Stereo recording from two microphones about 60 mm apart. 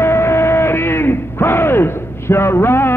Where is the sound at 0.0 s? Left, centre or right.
Left.